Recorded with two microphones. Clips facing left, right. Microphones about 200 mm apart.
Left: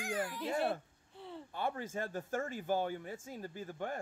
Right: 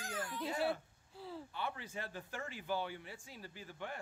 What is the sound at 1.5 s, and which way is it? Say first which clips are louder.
A man's voice: left 9 dB; 45° left (ahead or behind).